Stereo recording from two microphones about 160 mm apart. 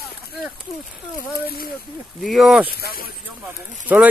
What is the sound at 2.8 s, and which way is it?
Speech, 70° left (ahead or behind).